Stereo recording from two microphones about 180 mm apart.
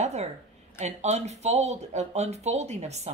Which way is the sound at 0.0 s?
40° right (ahead or behind).